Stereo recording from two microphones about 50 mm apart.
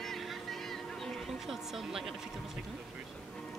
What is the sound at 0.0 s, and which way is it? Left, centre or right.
Vehicle, centre.